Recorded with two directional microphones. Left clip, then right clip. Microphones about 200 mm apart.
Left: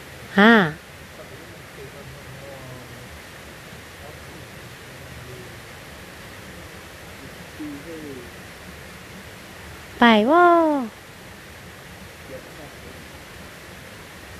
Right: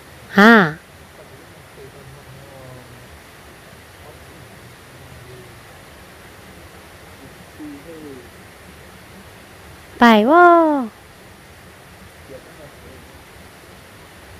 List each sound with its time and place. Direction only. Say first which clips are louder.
0.3 s speech: right 4 dB; 15° right (ahead or behind)
9.9 s speech: right 4 dB; 15° right (ahead or behind)